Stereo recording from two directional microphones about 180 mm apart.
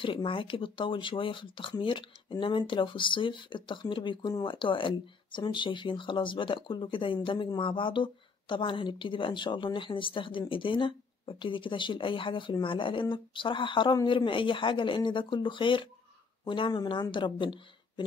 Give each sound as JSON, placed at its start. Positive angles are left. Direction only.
{"t": 0.0, "sound": "speech", "side_deg": 30}